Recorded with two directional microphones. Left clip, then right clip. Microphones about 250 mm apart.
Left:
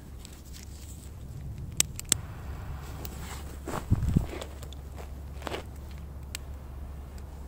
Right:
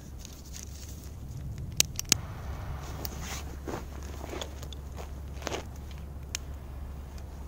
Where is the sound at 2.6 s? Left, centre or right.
Centre.